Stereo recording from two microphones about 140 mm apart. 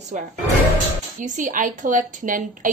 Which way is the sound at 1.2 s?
70° right (ahead or behind).